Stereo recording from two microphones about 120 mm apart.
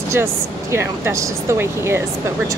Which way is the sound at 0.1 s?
20° right (ahead or behind).